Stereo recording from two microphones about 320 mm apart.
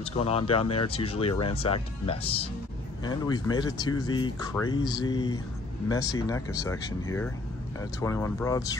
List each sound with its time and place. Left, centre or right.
0.0 s speech: centre